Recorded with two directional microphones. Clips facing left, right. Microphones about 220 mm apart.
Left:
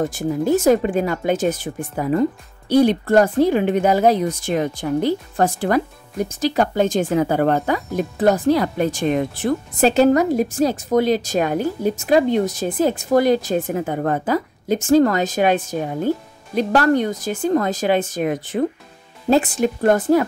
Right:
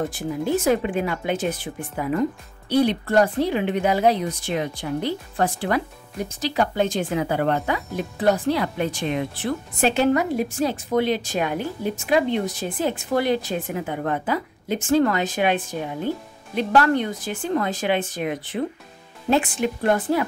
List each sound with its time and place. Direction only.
0.1 s a woman's voice: 45° left (ahead or behind)